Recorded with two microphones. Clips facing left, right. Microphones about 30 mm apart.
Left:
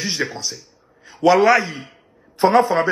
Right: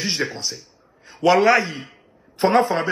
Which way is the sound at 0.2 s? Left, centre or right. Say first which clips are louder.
Left 1 dB; centre.